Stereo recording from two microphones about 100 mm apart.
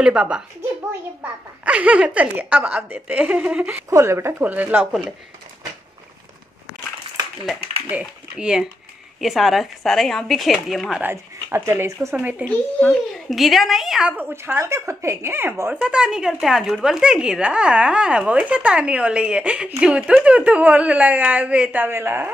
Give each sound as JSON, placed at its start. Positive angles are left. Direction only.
{"t": 0.0, "sound": "speech", "side_deg": -10}
{"t": 3.9, "sound": "speech", "side_deg": -25}
{"t": 7.9, "sound": "speech", "side_deg": -10}
{"t": 11.0, "sound": "speech", "side_deg": -25}
{"t": 12.8, "sound": "speech", "side_deg": 0}
{"t": 14.1, "sound": "speech", "side_deg": -25}
{"t": 15.7, "sound": "speech", "side_deg": -10}